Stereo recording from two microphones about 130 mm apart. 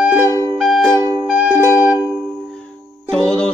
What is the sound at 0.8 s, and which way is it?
Music, 20° right (ahead or behind).